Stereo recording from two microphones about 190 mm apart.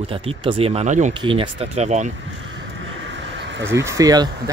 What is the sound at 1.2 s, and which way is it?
Speech, 25° right (ahead or behind).